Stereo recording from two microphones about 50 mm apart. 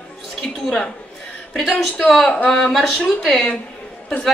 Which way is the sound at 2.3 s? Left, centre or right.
Centre.